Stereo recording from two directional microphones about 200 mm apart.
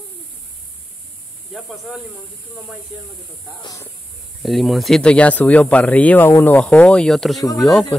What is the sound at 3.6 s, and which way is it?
Speech, 15° left (ahead or behind).